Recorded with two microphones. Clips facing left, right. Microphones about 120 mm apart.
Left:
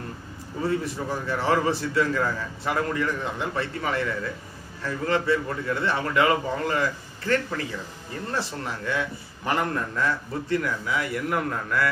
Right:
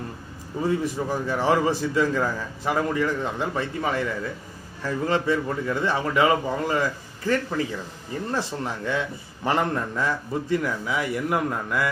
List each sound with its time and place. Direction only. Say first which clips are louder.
0.6 s a man's voice: right 2 dB; 15° right (ahead or behind)